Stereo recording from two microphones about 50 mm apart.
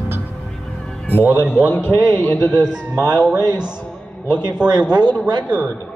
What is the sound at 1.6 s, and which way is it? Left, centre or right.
A man's voice, left.